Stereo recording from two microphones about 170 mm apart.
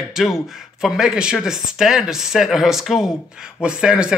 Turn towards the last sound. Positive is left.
turn(degrees=-5)  # may be behind; listen again after turning